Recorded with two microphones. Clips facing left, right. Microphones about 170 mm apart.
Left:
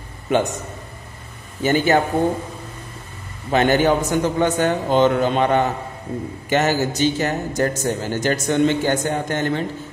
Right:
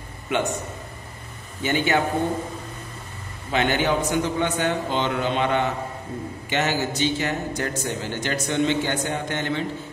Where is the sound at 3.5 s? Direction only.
40° left (ahead or behind).